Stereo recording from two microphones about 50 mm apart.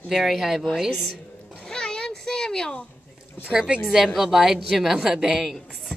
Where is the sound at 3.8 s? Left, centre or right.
Centre.